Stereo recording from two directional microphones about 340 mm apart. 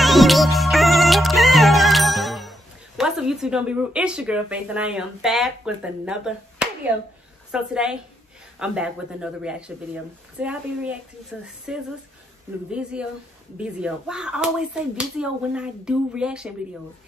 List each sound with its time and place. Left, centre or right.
0.0 s music: centre
7.5 s speech: centre
13.6 s speech: centre